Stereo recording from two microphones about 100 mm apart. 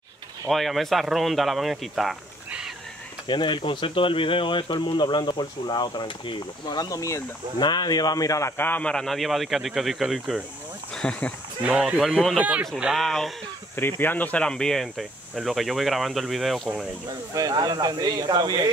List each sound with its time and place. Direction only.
0.5 s speech: centre (ahead or behind)
3.3 s speech: 55° left (ahead or behind); by 7.2 s 35° left (ahead or behind)
7.5 s a man's voice: 45° left (ahead or behind); by 10.4 s 5° right (ahead or behind)
11.0 s speech: 10° left (ahead or behind)
11.6 s speech: 10° right (ahead or behind)
13.7 s speech: 20° left (ahead or behind); by 16.8 s 5° right (ahead or behind)
17.3 s speech: 40° right (ahead or behind)